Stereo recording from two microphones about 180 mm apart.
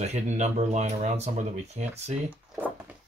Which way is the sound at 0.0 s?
40° right (ahead or behind).